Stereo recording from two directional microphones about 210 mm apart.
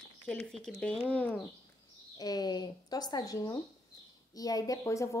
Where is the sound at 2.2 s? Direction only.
20° left (ahead or behind).